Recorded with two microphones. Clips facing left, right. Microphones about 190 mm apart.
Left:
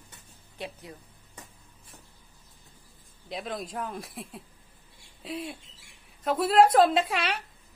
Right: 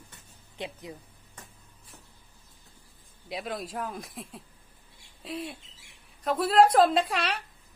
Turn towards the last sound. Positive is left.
turn(degrees=0)  # may be behind; listen again after turning